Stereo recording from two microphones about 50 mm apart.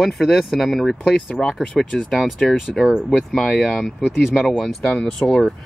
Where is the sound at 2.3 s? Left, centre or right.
Centre.